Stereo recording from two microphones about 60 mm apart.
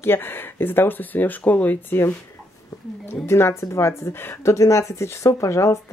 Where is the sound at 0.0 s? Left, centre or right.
Left.